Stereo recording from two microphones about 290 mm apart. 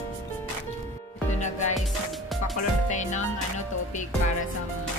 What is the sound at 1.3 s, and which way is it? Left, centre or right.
Music, left.